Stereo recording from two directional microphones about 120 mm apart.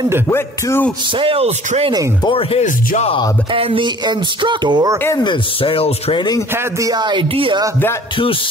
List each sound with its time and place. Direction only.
0.3 s speech: 20° left (ahead or behind)
1.1 s speech: 50° right (ahead or behind)
2.2 s speech: 50° left (ahead or behind)
3.5 s speech: 50° right (ahead or behind)
5.2 s speech: 45° left (ahead or behind)
6.1 s speech: 35° left (ahead or behind)
6.5 s speech: 30° right (ahead or behind)